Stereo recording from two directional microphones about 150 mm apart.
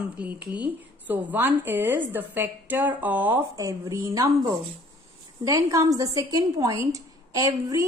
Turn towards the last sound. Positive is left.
turn(degrees=-25)  # may be behind; listen again after turning